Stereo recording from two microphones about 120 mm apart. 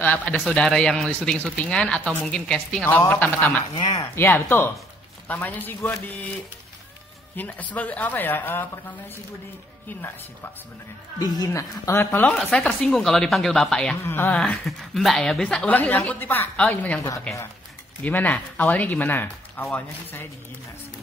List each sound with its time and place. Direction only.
0.0 s a woman's voice: 10° left (ahead or behind)
7.3 s a woman's voice: 15° left (ahead or behind)
9.8 s a woman's voice: 15° left (ahead or behind)
11.1 s speech: 30° left (ahead or behind); by 12.4 s 15° left (ahead or behind)
12.4 s speech: 5° left (ahead or behind)
14.0 s a woman's voice: 15° left (ahead or behind)
18.0 s a woman's voice: 15° left (ahead or behind)